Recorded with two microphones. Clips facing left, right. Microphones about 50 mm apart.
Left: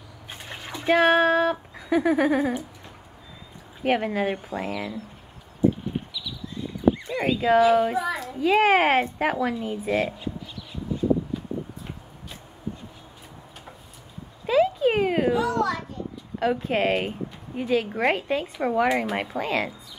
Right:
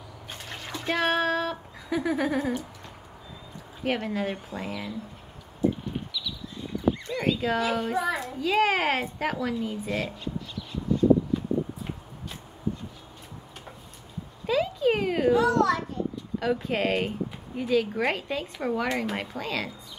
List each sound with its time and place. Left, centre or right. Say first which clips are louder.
0.3 s speech: left 1 dB; centre
3.8 s a woman's voice: left 5 dB; centre
7.1 s a child's voice: left 5 dB; centre
8.4 s a woman's voice: left 6 dB; centre
9.8 s a sound: left 5 dB; centre
14.4 s a sound: left 4 dB; centre
15.3 s a child's voice: right 2 dB; centre
16.3 s a woman's voice: left 4 dB; centre